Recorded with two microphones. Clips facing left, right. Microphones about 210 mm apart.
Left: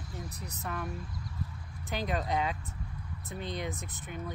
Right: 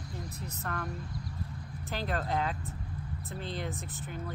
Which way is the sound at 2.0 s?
15° left (ahead or behind).